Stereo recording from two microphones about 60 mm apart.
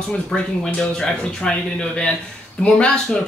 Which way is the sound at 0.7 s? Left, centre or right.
Centre.